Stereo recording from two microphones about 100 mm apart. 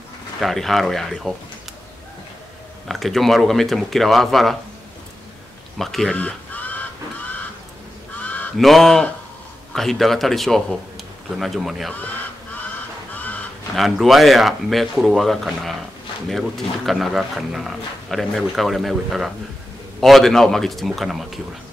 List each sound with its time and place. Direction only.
0.4 s speech: centre (ahead or behind)
2.9 s speech: centre (ahead or behind)
5.8 s speech: centre (ahead or behind)
6.1 s a sound: 15° left (ahead or behind)
8.2 s goose: 15° left (ahead or behind)
8.5 s speech: centre (ahead or behind)
13.1 s a sound: 15° left (ahead or behind)
13.7 s speech: centre (ahead or behind)